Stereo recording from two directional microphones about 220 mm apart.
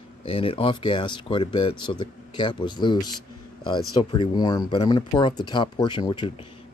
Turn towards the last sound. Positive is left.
turn(degrees=25)  # may be behind; listen again after turning